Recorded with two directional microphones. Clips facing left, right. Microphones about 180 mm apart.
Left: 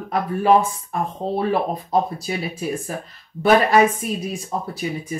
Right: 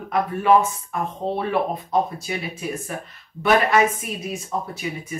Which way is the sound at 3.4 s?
30° left (ahead or behind).